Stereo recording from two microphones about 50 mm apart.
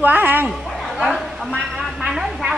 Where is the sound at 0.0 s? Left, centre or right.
Right.